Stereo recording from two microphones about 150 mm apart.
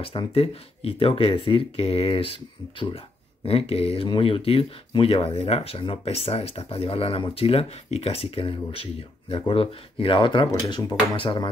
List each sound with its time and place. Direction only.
0.0 s speech: 35° left (ahead or behind)
3.4 s speech: 40° left (ahead or behind)